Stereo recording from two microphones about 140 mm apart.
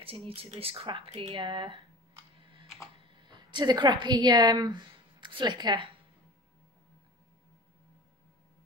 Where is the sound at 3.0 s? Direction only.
35° right (ahead or behind).